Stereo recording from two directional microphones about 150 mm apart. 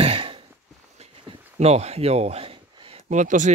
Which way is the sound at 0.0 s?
40° right (ahead or behind).